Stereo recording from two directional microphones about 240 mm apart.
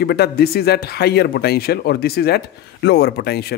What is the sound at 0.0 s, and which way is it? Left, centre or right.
Speech, left.